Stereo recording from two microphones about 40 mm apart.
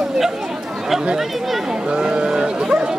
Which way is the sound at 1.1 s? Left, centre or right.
Centre.